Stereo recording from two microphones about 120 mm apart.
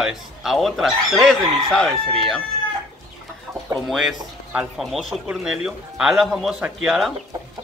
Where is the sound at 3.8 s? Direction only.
5° right (ahead or behind).